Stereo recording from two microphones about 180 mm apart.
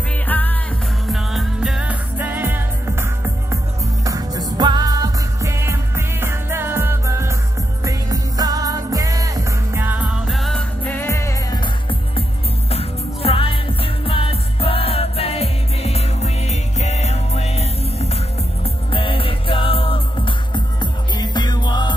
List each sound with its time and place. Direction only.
0.3 s music: 10° left (ahead or behind)
1.0 s music: centre (ahead or behind)
10.2 s music: centre (ahead or behind); by 12.0 s 25° left (ahead or behind)
12.6 s music: 35° left (ahead or behind)